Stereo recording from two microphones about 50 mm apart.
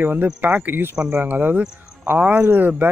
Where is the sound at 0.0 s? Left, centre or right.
Right.